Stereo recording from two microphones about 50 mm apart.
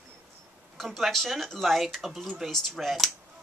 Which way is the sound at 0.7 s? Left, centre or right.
Centre.